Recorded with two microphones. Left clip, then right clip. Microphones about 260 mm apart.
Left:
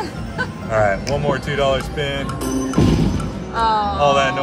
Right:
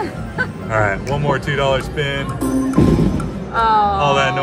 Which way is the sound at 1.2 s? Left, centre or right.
Right.